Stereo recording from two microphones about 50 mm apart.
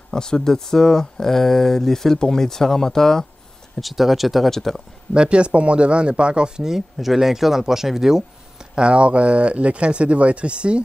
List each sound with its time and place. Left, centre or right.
0.1 s speech: centre
3.8 s speech: centre
5.1 s speech: right
8.7 s speech: right